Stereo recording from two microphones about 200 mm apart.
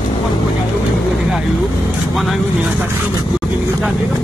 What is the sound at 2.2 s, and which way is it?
Speech, centre (ahead or behind).